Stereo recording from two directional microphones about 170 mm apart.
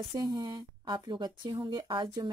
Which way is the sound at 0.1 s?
20° right (ahead or behind).